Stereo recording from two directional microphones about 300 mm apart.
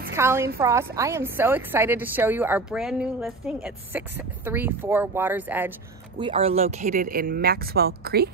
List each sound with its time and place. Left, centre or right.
0.1 s a woman's voice: centre; by 8.3 s right